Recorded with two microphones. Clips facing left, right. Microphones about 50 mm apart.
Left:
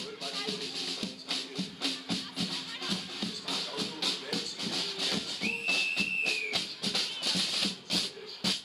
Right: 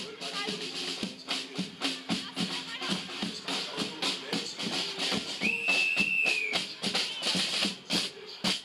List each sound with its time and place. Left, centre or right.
0.2 s music: right